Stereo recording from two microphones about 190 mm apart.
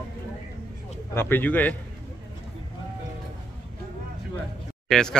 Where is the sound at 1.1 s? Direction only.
10° left (ahead or behind).